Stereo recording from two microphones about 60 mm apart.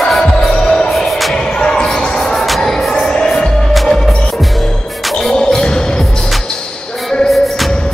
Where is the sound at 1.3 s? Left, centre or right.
Centre.